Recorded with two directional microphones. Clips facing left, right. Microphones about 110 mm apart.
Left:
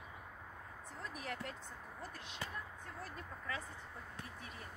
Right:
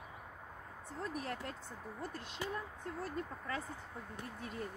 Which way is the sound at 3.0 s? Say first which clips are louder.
Right 7 dB; 40° right (ahead or behind).